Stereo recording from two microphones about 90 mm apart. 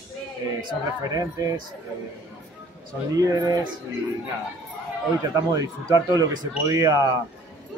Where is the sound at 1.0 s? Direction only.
40° right (ahead or behind).